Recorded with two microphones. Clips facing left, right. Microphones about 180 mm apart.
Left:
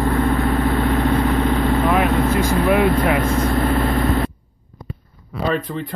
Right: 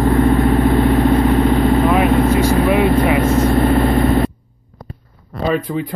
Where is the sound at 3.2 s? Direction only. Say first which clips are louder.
Right 5 dB; 25° right (ahead or behind).